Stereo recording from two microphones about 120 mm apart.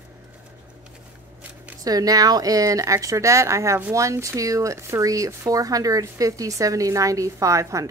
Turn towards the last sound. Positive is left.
turn(degrees=-25)  # may be behind; listen again after turning